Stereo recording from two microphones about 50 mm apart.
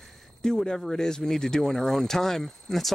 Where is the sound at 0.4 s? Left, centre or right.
Centre.